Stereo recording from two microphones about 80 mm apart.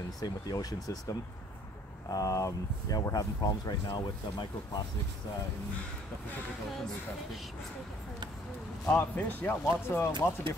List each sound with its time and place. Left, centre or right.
0.2 s speech: left
2.1 s speech: left
8.8 s speech: left